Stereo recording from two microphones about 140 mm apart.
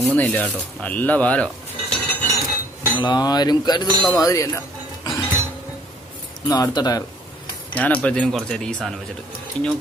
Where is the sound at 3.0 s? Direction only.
30° left (ahead or behind).